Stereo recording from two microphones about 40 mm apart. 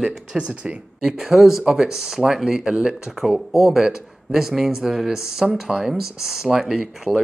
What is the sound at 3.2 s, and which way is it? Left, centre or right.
Speech, centre.